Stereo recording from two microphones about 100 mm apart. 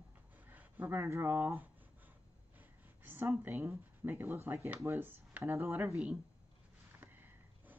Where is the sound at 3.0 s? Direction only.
20° right (ahead or behind).